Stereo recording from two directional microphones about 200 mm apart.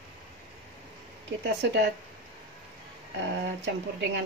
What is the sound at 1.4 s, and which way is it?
Speech, 60° right (ahead or behind).